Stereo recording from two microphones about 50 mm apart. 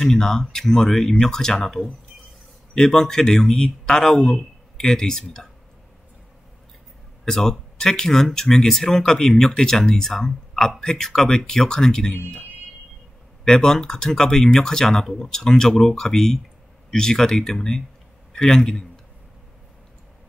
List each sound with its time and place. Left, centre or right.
0.0 s speech: centre
7.2 s speech: centre
12.1 s speech: left
13.4 s a man's voice: centre